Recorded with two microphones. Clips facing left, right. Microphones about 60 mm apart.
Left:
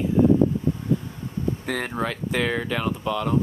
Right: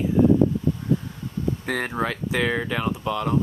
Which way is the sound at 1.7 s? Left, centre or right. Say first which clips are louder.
Right 3 dB; centre.